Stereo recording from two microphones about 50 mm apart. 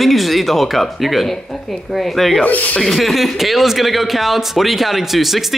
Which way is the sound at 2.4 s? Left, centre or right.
Left.